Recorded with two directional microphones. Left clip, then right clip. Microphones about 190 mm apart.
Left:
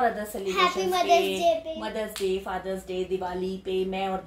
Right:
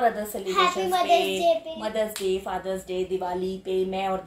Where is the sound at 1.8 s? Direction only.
15° right (ahead or behind).